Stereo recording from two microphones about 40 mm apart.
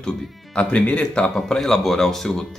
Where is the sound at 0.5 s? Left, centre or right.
Left.